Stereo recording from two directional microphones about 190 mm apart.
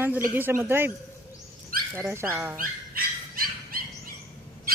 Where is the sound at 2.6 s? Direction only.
50° right (ahead or behind).